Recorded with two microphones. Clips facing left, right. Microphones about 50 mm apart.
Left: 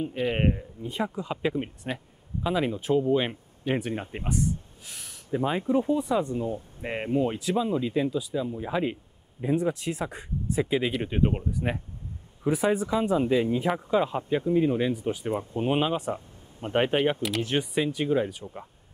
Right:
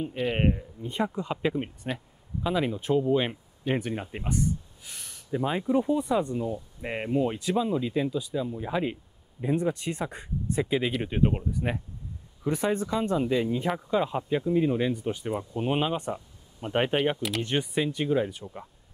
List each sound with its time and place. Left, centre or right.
0.0 s speech: centre
4.1 s a sound: centre
5.3 s speech: centre
15.3 s speech: left
15.7 s speech: centre